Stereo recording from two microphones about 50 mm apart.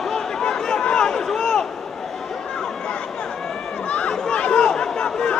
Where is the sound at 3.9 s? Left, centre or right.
Left.